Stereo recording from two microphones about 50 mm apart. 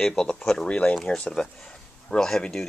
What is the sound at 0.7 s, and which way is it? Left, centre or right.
Speech, left.